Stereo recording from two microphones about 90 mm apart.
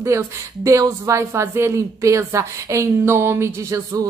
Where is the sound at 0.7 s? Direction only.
40° right (ahead or behind).